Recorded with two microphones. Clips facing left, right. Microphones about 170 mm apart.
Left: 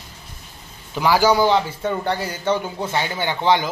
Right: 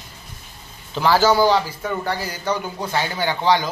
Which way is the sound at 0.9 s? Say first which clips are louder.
Even; 10° left (ahead or behind).